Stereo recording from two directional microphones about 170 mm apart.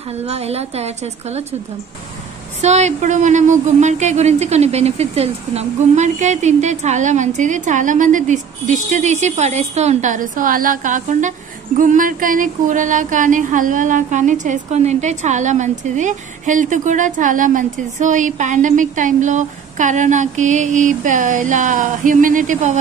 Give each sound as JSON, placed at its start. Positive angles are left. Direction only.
{"t": 0.1, "sound": "a woman's voice", "side_deg": -40}
{"t": 2.6, "sound": "speech", "side_deg": -40}